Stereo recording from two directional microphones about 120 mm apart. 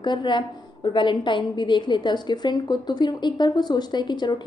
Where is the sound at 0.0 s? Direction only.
40° left (ahead or behind).